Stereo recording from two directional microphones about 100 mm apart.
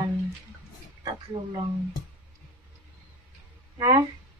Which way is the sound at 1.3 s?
75° right (ahead or behind).